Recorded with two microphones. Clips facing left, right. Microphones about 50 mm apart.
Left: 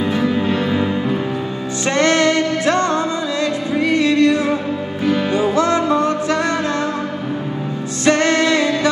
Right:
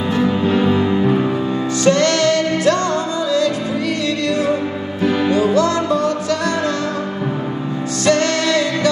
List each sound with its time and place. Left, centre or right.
0.5 s music: centre
1.9 s music: left
3.9 s music: left
8.0 s music: left